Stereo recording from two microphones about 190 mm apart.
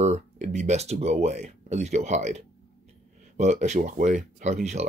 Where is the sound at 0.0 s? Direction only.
35° right (ahead or behind).